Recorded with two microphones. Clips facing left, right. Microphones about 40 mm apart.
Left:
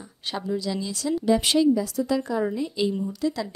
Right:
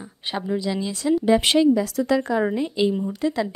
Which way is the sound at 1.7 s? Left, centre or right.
Right.